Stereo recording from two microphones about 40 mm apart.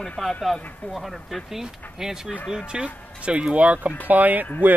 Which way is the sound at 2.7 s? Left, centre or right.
Right.